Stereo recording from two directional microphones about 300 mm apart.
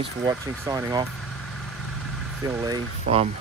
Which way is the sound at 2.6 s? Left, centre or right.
Centre.